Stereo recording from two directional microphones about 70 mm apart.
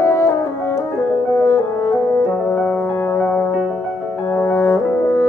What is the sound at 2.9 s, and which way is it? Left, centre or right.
Music, left.